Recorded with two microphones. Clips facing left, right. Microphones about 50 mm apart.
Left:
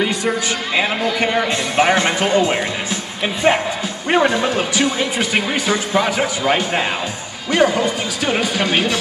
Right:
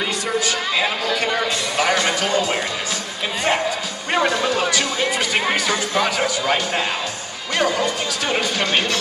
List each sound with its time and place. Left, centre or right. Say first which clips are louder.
1.0 s speech: left 3 dB; left
1.8 s music: left 4 dB; left
3.4 s speech: left 4 dB; left